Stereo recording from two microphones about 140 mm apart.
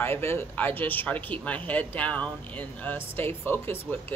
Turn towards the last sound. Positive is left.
turn(degrees=15)  # may be behind; listen again after turning